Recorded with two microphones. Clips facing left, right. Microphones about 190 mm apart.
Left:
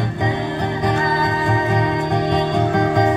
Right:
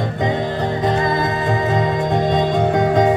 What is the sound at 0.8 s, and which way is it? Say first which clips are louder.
Music: right 1 dB; 20° right (ahead or behind).